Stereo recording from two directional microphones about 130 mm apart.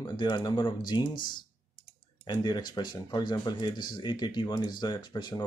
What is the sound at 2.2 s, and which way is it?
Speech, 35° left (ahead or behind).